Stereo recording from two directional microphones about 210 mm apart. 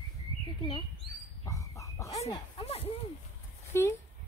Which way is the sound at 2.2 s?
30° left (ahead or behind).